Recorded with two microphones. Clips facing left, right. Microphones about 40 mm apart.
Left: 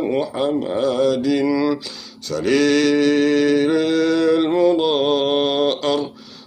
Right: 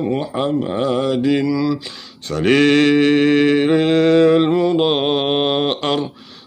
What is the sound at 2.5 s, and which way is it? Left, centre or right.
Mantra, right.